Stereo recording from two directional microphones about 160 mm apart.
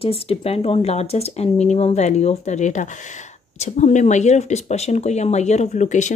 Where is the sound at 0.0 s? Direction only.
35° left (ahead or behind).